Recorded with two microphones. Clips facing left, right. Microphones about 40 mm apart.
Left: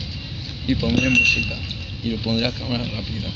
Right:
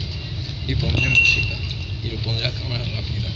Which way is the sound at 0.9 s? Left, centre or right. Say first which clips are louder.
Right 1 dB; right.